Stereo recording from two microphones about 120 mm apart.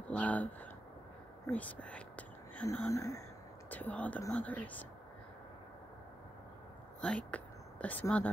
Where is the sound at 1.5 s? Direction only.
10° left (ahead or behind).